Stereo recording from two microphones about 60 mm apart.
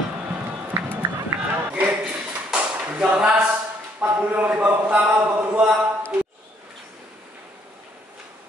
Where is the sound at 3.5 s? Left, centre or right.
Right; by 5.8 s centre.